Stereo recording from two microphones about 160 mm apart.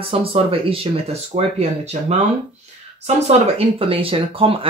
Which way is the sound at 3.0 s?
40° right (ahead or behind).